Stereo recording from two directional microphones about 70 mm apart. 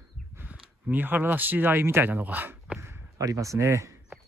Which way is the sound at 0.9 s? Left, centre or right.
Right.